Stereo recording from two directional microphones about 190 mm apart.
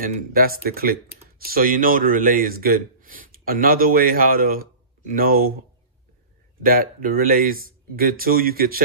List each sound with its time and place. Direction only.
0.0 s speech: 50° right (ahead or behind)
6.6 s speech: 50° right (ahead or behind)